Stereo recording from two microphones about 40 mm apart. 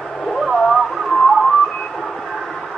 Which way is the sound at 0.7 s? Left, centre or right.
Centre.